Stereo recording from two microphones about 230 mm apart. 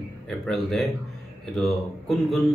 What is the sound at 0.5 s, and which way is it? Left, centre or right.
A man's voice, centre.